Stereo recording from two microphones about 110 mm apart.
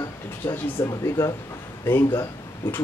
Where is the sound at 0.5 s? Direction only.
30° left (ahead or behind).